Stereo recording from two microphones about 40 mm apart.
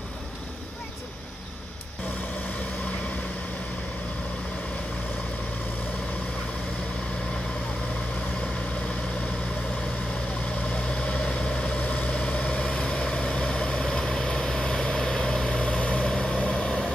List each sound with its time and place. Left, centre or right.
10.7 s vehicle: left
11.8 s vehicle: left